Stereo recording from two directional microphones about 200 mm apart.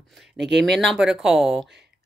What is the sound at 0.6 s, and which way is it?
Speech, centre (ahead or behind).